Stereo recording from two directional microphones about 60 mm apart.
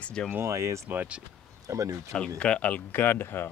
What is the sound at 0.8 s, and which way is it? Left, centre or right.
Speech, right.